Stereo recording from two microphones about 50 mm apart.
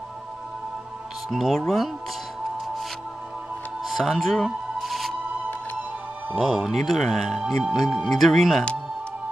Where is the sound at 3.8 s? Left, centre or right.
Centre.